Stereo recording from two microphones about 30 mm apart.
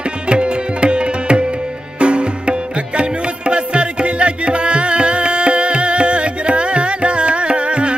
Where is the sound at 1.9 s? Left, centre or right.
Right.